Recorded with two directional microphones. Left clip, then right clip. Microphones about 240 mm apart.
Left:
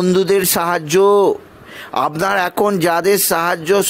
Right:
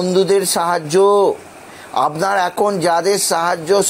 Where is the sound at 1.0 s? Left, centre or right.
Left.